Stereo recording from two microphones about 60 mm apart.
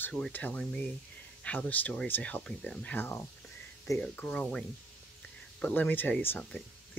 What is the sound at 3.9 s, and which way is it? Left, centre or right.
Speech, left.